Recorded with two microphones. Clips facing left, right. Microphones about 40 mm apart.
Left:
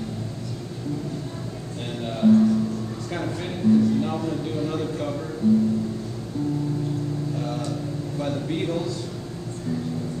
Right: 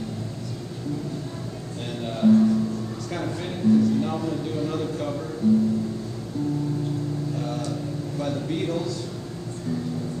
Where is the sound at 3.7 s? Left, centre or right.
Centre.